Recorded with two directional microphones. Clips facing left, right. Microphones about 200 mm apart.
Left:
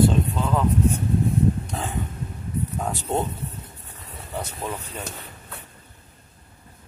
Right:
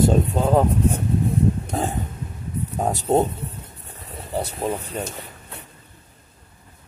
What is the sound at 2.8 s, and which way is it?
Speech, 40° right (ahead or behind).